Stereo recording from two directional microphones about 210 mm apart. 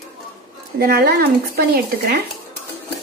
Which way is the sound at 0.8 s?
45° right (ahead or behind).